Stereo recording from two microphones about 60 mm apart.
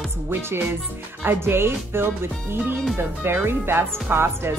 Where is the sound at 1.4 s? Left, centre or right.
Right.